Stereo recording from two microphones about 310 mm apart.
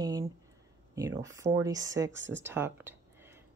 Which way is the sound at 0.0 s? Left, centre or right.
Centre.